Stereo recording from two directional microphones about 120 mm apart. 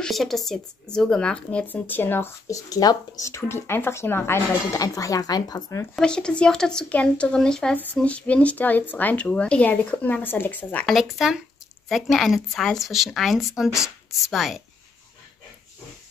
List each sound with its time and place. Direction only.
0.0 s speech: centre (ahead or behind); by 5.9 s 30° left (ahead or behind)
5.9 s speech: 5° left (ahead or behind)
10.9 s a woman's voice: centre (ahead or behind)